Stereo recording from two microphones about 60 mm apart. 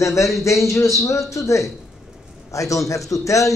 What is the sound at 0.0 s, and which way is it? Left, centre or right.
A man's voice, left.